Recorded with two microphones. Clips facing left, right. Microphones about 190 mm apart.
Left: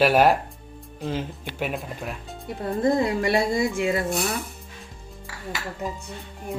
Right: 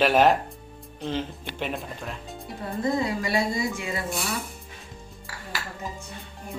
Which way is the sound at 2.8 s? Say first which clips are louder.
Left 5 dB; 55° left (ahead or behind).